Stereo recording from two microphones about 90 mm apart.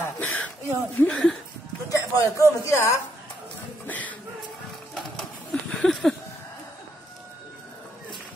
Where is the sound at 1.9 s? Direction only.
35° left (ahead or behind).